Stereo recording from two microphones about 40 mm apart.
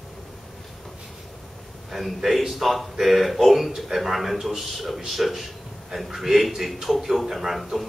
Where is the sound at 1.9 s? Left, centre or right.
Centre.